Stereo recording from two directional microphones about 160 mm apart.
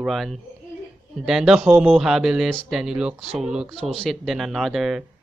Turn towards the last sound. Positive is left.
turn(degrees=0)  # may be behind; listen again after turning